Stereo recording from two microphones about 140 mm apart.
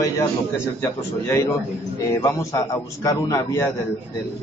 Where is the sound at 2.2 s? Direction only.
25° left (ahead or behind).